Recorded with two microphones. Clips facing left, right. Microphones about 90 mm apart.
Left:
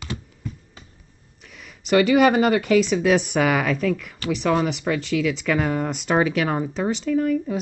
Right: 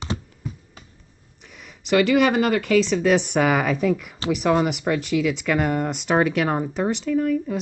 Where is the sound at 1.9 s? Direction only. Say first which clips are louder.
Left 2 dB; 5° left (ahead or behind).